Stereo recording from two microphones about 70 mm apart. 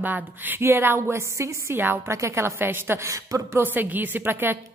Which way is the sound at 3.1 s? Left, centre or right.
Right.